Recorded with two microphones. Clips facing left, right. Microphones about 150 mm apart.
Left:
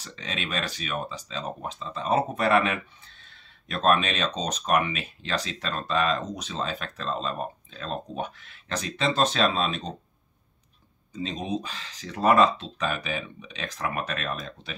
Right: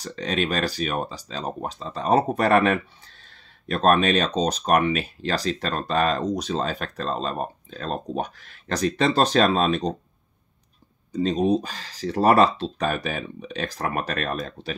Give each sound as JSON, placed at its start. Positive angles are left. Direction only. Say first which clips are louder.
{"t": 0.0, "sound": "speech", "louder": "right 9 dB", "side_deg": -40}
{"t": 11.1, "sound": "speech", "louder": "right 9 dB", "side_deg": -40}